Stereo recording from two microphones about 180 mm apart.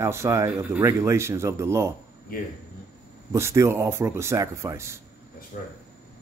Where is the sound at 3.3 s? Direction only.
15° right (ahead or behind).